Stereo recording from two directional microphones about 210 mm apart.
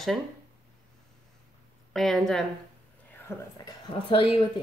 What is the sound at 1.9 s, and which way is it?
Speech, centre (ahead or behind).